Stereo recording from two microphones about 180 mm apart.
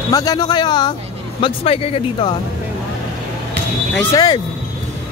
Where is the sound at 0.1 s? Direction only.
20° left (ahead or behind).